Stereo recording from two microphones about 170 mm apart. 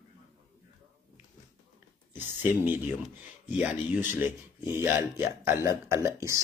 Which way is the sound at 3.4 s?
5° right (ahead or behind).